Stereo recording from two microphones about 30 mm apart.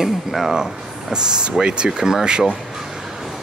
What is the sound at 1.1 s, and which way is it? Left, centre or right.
Speech, right.